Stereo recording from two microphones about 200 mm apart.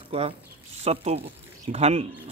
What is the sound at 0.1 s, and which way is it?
Speech, 30° right (ahead or behind).